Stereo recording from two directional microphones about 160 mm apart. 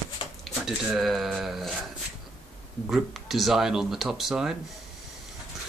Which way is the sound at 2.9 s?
Centre (ahead or behind).